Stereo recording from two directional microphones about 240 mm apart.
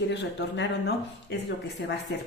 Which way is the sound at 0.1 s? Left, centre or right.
Left.